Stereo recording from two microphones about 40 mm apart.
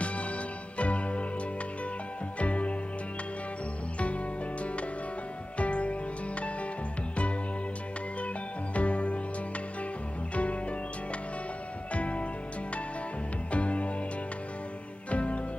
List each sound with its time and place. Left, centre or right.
0.0 s music: left
2.3 s music: left
5.6 s music: left
8.7 s music: left
10.3 s music: left
11.9 s music: left
13.5 s music: left
15.0 s music: left